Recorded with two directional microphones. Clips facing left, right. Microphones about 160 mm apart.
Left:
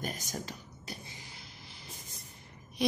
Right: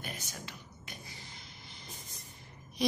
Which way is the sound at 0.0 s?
40° left (ahead or behind).